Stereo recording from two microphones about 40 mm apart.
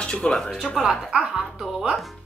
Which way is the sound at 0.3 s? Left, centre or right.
Centre.